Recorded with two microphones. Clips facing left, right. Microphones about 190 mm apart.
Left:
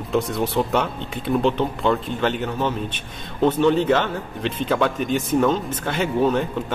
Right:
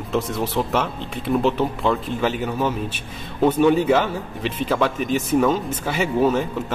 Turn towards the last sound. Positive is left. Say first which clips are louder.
# right 1 dB
turn(degrees=-5)  # may be behind; listen again after turning